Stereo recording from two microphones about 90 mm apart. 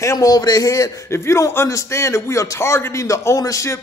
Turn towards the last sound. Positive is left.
turn(degrees=35)  # may be behind; listen again after turning